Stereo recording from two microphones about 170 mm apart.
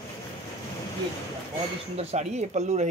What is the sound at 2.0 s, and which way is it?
Speech, 40° right (ahead or behind).